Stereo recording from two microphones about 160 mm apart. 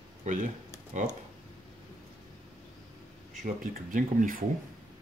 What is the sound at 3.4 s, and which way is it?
Speech, 55° right (ahead or behind).